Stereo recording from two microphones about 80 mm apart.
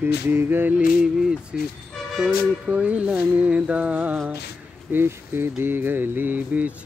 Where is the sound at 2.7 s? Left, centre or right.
Centre.